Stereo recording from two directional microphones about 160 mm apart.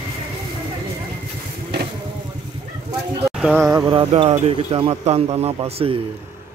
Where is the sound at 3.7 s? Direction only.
30° right (ahead or behind).